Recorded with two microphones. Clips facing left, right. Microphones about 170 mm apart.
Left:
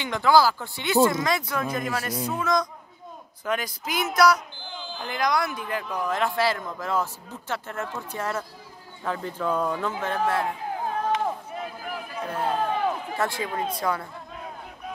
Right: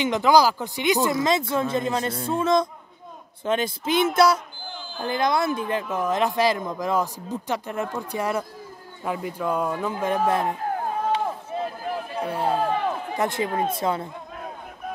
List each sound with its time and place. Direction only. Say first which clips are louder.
0.0 s speech: right 2 dB; 20° right (ahead or behind)
11.1 s run: right 1 dB; 30° right (ahead or behind)
12.3 s speech: right 2 dB; 10° right (ahead or behind); by 14.0 s 25° right (ahead or behind)